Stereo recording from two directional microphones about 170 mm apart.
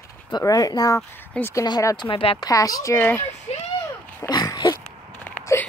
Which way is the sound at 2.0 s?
35° left (ahead or behind).